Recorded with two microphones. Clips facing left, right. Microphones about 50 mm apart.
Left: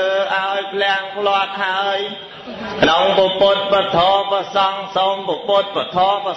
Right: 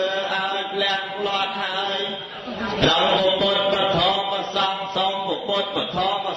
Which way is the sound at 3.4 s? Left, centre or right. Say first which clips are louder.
Left 5 dB; left.